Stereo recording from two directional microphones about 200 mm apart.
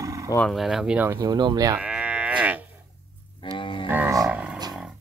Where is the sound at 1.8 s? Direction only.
5° right (ahead or behind).